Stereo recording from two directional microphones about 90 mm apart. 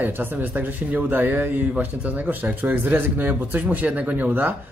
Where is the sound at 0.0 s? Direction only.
20° right (ahead or behind).